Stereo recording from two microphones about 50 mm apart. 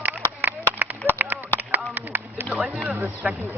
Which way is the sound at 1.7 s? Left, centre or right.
Right.